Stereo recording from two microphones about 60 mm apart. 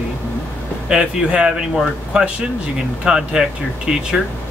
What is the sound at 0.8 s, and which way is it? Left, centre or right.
Speech, centre.